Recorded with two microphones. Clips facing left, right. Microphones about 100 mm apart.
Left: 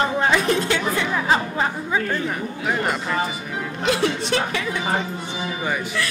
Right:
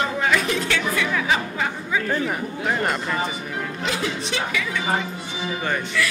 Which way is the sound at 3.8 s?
60° left (ahead or behind).